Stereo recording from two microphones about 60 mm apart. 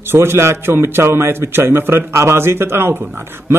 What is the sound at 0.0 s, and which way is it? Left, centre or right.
A man's voice, right.